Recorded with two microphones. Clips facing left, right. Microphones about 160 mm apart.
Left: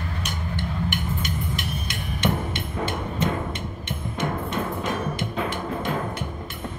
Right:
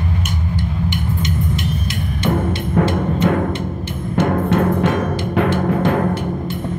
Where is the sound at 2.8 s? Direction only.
75° right (ahead or behind); by 5.1 s 90° right.